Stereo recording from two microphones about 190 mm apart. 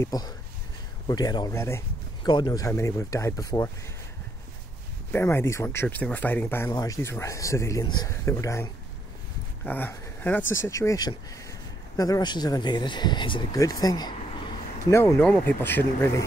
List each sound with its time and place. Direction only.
0.0 s speech: 20° left (ahead or behind)
5.1 s speech: 10° left (ahead or behind)
9.7 s speech: 10° left (ahead or behind)